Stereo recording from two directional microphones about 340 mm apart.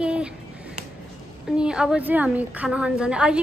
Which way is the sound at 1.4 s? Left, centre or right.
Centre.